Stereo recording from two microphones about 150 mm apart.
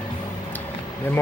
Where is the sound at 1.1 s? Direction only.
15° left (ahead or behind).